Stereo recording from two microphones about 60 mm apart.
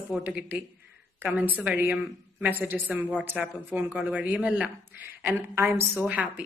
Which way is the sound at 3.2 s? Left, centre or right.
Right.